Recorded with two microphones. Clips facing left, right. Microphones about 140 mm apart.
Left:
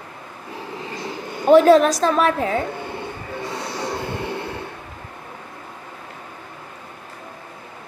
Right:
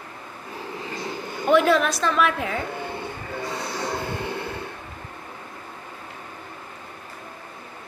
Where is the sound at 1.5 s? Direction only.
35° left (ahead or behind).